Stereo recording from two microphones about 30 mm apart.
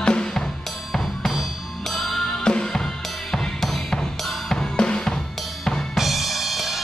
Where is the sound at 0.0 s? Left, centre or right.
Left.